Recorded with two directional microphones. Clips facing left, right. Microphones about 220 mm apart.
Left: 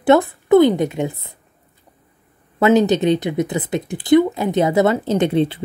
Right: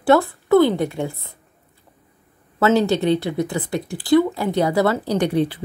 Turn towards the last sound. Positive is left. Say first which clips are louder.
# left 2 dB
turn(degrees=25)  # may be behind; listen again after turning